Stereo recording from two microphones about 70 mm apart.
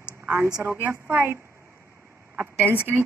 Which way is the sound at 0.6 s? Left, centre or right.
Right.